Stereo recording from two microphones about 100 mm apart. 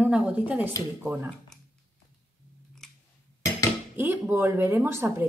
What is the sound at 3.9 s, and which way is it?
A woman's voice, 25° right (ahead or behind).